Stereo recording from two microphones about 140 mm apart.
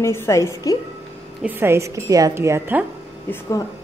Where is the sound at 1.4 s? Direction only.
15° right (ahead or behind).